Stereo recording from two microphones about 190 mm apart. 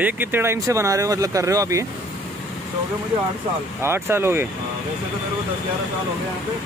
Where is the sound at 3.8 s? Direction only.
15° right (ahead or behind).